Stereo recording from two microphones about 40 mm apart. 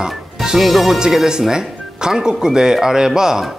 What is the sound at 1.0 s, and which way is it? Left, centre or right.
Speech, centre.